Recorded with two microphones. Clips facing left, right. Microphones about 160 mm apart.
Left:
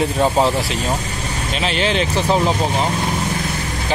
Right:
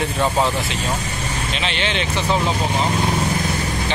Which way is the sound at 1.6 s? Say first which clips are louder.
Left 6 dB; 40° left (ahead or behind).